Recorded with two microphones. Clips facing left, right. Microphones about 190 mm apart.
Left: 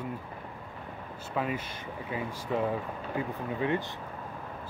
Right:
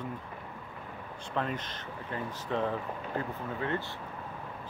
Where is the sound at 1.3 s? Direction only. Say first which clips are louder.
Left 2 dB; 10° left (ahead or behind).